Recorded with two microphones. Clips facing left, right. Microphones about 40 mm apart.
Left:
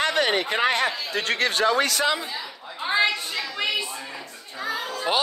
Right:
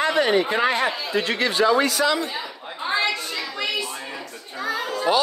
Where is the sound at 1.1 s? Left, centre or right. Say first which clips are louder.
Right 3 dB; left.